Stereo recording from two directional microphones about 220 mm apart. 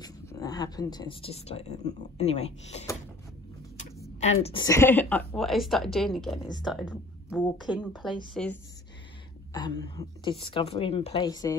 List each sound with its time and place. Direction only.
0.0 s speech: 15° left (ahead or behind)
9.5 s speech: 20° left (ahead or behind)